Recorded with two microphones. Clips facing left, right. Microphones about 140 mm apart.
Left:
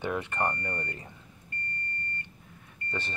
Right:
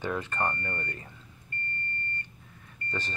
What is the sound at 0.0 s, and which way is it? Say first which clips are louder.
Speech: left 1 dB; 15° left (ahead or behind).